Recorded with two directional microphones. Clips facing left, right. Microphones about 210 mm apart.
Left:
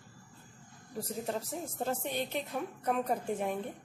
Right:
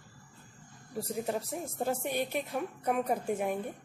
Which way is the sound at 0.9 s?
10° right (ahead or behind).